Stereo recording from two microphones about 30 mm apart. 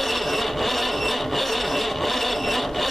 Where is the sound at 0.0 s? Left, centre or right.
Centre.